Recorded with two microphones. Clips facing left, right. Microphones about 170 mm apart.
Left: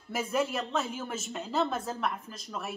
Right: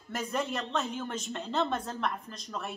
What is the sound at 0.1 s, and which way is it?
A woman's voice, 5° left (ahead or behind).